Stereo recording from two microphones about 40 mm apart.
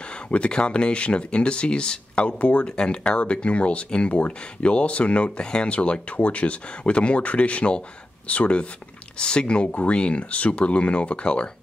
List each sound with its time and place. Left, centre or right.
0.1 s speech: left
5.7 s speech: left